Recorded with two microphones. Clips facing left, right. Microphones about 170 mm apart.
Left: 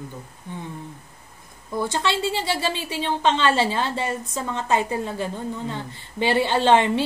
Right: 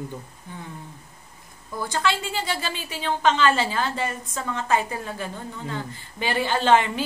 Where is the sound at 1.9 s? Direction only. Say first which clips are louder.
Right 1 dB; 25° left (ahead or behind).